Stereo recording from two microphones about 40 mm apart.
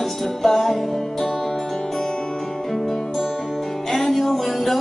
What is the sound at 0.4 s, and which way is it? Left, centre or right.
Music, centre.